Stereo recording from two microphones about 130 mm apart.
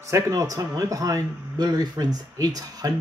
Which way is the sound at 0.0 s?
25° right (ahead or behind).